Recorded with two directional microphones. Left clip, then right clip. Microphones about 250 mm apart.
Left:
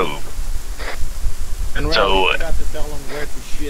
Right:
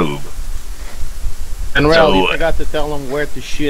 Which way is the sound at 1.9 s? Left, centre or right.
Centre.